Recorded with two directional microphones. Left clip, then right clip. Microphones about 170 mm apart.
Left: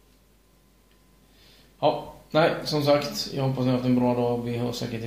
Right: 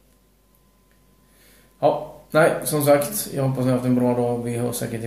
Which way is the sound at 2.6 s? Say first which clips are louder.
Right 4 dB; 20° right (ahead or behind).